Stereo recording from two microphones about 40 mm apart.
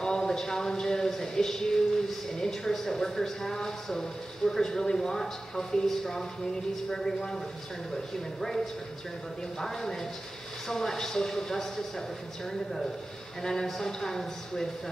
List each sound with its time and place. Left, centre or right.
0.0 s speech: centre
8.4 s speech: centre
13.4 s speech: centre